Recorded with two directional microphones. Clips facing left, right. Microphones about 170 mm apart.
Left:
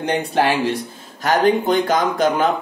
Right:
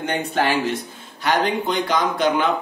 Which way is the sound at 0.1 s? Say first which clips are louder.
Left 3 dB; 35° left (ahead or behind).